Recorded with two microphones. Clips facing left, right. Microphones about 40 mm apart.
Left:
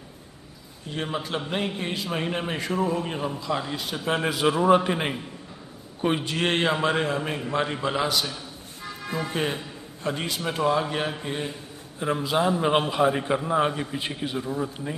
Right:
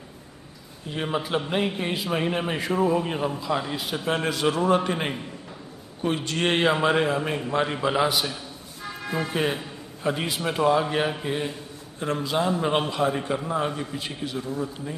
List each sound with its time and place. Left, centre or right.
0.8 s a man's voice: centre
4.1 s a man's voice: centre
6.3 s a man's voice: centre
8.8 s music: centre
10.0 s a man's voice: centre
12.0 s a man's voice: centre